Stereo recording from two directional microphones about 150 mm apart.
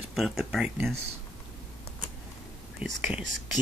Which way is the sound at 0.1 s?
Centre (ahead or behind).